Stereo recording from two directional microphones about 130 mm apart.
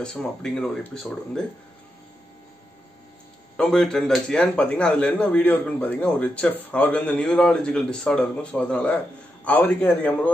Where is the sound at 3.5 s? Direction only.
5° left (ahead or behind).